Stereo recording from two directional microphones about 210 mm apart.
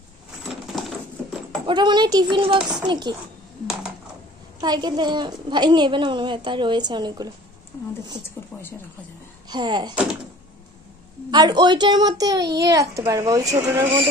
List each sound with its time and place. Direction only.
0.7 s a sound: centre (ahead or behind)
1.7 s a woman's voice: 20° right (ahead or behind)
4.6 s a woman's voice: 20° right (ahead or behind)
8.5 s a woman's voice: 10° left (ahead or behind)
9.5 s a woman's voice: 20° right (ahead or behind)
11.2 s a child's voice: 20° right (ahead or behind)